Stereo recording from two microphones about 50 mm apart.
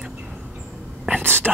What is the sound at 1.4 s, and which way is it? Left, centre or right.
Speech, centre.